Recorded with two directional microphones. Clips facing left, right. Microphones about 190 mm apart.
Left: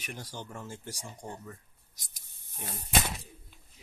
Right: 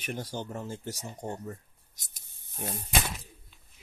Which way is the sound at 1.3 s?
35° right (ahead or behind).